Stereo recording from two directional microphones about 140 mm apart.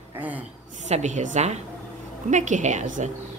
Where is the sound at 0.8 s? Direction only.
55° right (ahead or behind).